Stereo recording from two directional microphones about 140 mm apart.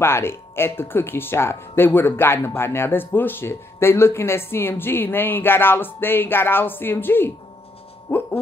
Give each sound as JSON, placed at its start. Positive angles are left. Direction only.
{"t": 0.0, "sound": "speech", "side_deg": 15}
{"t": 8.1, "sound": "hoot", "side_deg": 20}